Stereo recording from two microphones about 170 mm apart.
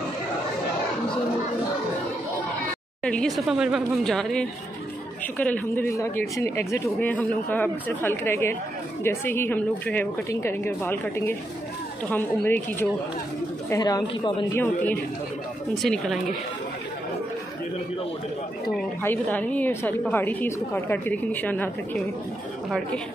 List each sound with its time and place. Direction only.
3.0 s a woman's voice: 5° left (ahead or behind); by 14.3 s 25° left (ahead or behind)
15.7 s speech: centre (ahead or behind)
18.8 s a woman's voice: 10° left (ahead or behind)